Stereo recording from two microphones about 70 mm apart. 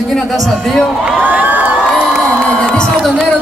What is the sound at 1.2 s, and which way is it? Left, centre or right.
Crowd, right.